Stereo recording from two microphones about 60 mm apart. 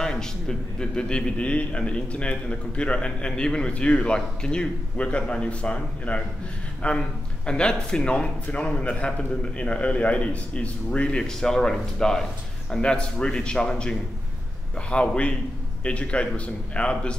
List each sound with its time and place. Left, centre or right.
0.0 s a man's voice: centre